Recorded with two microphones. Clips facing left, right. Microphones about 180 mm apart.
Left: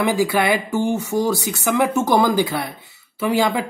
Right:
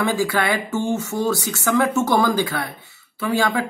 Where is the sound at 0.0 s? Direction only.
15° left (ahead or behind).